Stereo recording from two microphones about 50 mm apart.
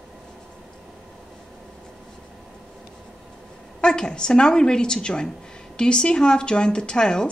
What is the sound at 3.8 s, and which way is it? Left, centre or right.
A woman's voice, centre.